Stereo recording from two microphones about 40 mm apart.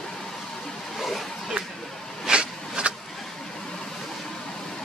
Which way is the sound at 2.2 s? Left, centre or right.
Right.